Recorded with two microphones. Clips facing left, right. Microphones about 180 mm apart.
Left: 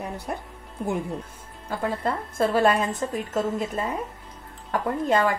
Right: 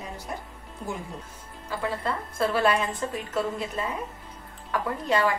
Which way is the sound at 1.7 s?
45° left (ahead or behind).